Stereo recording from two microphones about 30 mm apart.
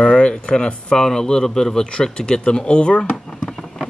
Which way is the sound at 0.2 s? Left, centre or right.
Left.